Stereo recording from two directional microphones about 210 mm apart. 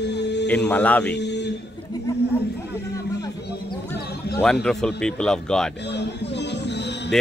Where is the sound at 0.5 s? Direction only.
5° left (ahead or behind).